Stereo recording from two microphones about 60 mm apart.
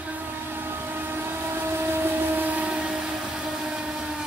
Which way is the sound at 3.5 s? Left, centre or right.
Centre.